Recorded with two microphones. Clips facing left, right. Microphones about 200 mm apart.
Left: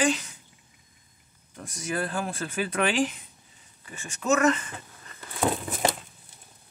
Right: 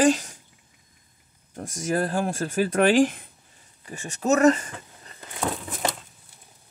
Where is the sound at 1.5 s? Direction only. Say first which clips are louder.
Right 6 dB; 45° right (ahead or behind).